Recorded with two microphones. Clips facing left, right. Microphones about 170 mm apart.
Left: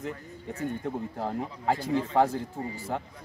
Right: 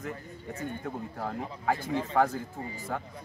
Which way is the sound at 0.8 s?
20° left (ahead or behind).